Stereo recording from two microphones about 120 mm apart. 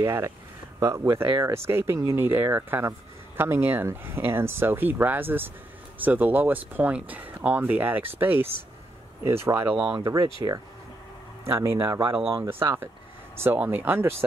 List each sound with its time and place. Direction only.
0.0 s speech: 25° right (ahead or behind)
10.2 s speech: 35° right (ahead or behind)
11.4 s speech: 20° right (ahead or behind)
12.0 s speech: 45° right (ahead or behind)
13.4 s speech: 15° right (ahead or behind)